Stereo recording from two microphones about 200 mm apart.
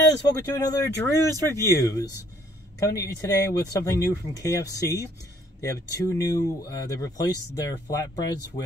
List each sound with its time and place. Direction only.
0.6 s speech: 15° left (ahead or behind)